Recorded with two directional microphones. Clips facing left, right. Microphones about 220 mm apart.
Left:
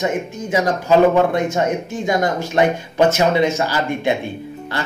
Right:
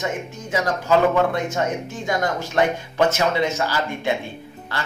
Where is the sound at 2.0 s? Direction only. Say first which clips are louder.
Left 4 dB; 15° left (ahead or behind).